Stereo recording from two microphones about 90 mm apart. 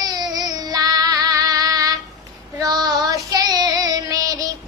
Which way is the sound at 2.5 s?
45° right (ahead or behind).